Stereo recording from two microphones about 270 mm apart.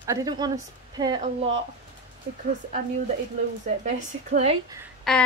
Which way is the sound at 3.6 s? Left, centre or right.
Right.